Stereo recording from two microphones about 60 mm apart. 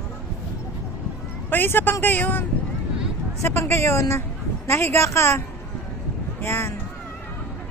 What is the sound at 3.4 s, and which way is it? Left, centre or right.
A woman's voice, left.